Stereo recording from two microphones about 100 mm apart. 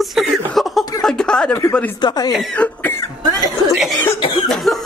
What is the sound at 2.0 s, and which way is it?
Speech, 50° left (ahead or behind).